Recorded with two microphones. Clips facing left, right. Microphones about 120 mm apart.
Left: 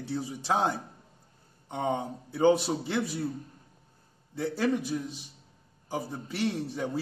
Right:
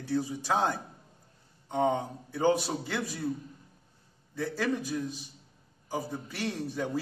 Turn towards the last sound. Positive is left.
turn(degrees=20)  # may be behind; listen again after turning